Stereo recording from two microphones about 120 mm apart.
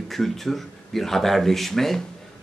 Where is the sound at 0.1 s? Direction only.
Centre (ahead or behind).